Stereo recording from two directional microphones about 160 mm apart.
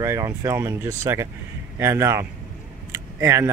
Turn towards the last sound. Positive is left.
turn(degrees=-15)  # may be behind; listen again after turning